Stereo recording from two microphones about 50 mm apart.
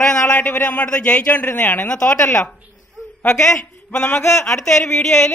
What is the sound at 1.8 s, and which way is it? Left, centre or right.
Speech, left.